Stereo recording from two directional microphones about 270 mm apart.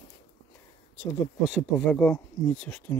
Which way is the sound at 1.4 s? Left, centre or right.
Centre.